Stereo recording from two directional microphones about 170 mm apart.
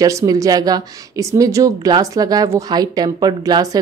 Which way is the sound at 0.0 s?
20° right (ahead or behind).